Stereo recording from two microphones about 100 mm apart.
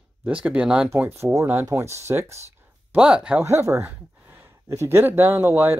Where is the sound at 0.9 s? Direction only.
25° right (ahead or behind).